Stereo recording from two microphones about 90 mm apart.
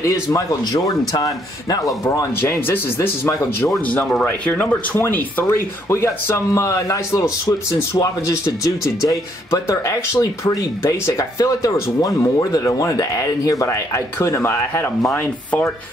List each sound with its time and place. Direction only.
0.0 s speech: 35° left (ahead or behind)
2.4 s speech: 25° left (ahead or behind)
3.3 s speech: 35° left (ahead or behind)
3.8 s speech: 15° left (ahead or behind)
15.1 s rub: 15° left (ahead or behind)